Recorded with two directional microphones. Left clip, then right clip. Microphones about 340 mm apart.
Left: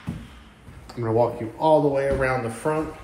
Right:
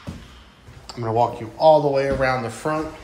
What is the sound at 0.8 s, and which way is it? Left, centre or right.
Speech, centre.